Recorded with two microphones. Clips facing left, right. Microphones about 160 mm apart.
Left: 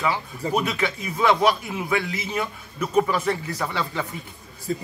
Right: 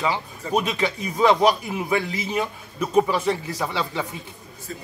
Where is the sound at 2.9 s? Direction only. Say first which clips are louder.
Right 1 dB; 10° right (ahead or behind).